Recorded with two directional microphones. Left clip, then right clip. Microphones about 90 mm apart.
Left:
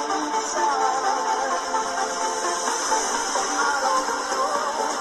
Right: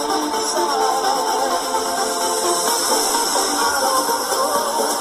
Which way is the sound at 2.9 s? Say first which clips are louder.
Right 4 dB; 90° right.